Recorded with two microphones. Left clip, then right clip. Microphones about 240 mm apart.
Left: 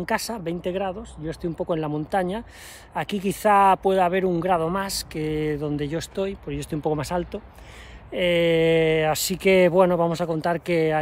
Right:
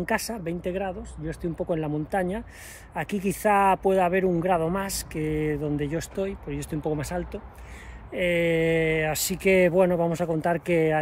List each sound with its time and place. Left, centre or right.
0.0 s speech: centre